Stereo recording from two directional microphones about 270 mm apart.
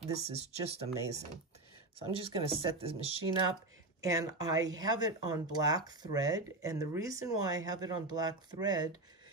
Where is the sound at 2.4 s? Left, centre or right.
Right.